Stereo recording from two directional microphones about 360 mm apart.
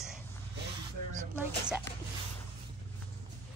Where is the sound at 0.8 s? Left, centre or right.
Right.